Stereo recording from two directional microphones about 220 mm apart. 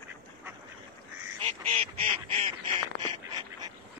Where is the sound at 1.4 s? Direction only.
30° right (ahead or behind).